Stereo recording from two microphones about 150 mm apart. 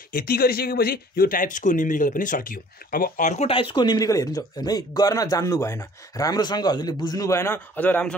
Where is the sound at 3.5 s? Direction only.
35° left (ahead or behind); by 8.1 s 10° left (ahead or behind).